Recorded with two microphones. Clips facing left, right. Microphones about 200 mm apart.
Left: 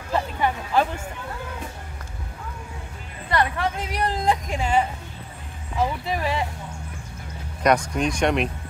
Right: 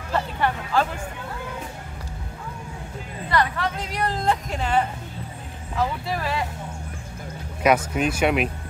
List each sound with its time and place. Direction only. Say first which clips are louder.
0.1 s music: even; 15° left (ahead or behind)
3.3 s a woman's voice: even; 20° left (ahead or behind)
7.6 s speech: right 1 dB; 5° right (ahead or behind)